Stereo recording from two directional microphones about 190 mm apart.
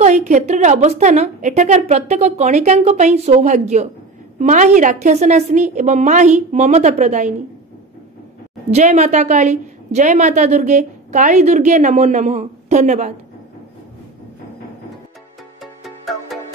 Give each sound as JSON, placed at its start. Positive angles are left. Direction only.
{"t": 0.0, "sound": "a woman's voice", "side_deg": -40}
{"t": 8.6, "sound": "a woman's voice", "side_deg": -35}
{"t": 15.6, "sound": "music", "side_deg": 0}